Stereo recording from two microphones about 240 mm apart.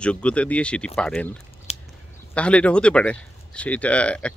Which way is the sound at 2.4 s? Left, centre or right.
Centre.